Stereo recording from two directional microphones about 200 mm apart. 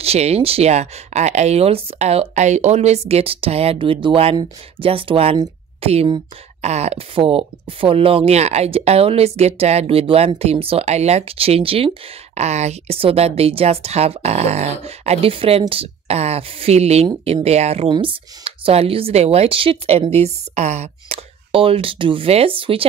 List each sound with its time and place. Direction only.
0.0 s speech: 30° right (ahead or behind)